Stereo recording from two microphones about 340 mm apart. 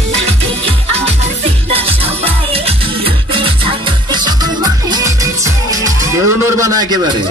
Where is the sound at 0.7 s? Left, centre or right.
Centre.